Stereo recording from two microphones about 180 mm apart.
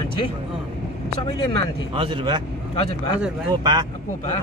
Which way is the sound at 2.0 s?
30° right (ahead or behind).